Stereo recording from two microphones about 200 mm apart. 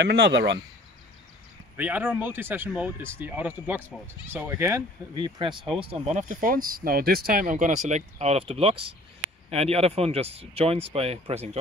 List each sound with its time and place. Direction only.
0.0 s speech: 60° right (ahead or behind)
1.8 s speech: 10° right (ahead or behind); by 11.5 s 30° right (ahead or behind)